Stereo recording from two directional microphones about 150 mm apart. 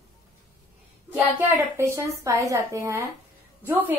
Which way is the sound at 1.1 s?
15° right (ahead or behind).